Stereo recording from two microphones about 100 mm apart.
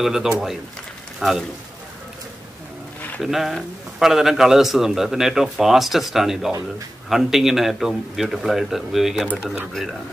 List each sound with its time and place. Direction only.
0.0 s speech: 5° right (ahead or behind)
3.2 s speech: centre (ahead or behind)